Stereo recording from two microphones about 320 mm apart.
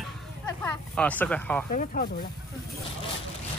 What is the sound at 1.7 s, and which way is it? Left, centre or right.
Speech, left.